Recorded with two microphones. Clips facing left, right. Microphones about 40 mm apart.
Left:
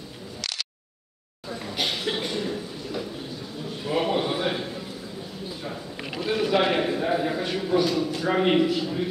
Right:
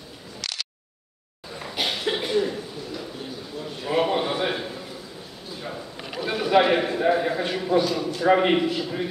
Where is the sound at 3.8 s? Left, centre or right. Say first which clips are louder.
Right 2 dB; centre.